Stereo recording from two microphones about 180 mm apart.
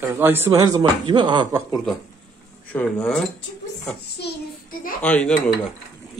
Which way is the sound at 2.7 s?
5° left (ahead or behind).